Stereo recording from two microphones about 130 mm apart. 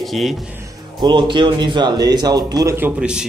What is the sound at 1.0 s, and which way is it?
Speech, 40° right (ahead or behind).